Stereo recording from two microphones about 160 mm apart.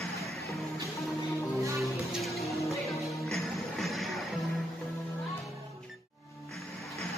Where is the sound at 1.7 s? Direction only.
Centre (ahead or behind).